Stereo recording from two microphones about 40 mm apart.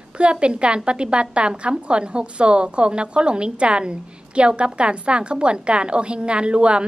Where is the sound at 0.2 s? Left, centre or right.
Right.